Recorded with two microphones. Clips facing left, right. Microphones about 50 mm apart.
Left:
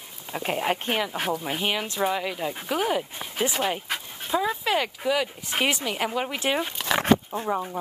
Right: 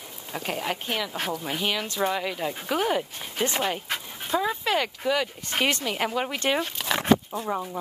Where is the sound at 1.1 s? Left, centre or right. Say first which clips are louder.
Left 2 dB; centre.